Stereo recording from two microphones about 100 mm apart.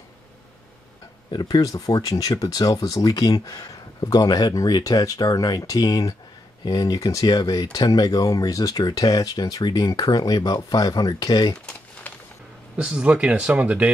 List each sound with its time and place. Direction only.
1.3 s speech: 40° left (ahead or behind)
12.1 s music: 15° left (ahead or behind)
12.7 s speech: 10° right (ahead or behind)